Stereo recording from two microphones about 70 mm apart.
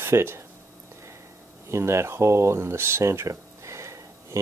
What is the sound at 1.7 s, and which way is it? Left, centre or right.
Speech, right.